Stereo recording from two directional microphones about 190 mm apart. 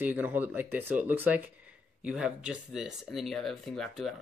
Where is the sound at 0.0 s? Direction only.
10° right (ahead or behind).